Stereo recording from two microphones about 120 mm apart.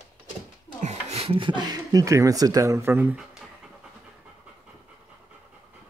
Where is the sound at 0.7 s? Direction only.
70° right (ahead or behind); by 3.2 s 20° right (ahead or behind).